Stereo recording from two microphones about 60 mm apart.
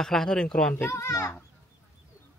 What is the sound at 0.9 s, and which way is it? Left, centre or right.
Speech, left.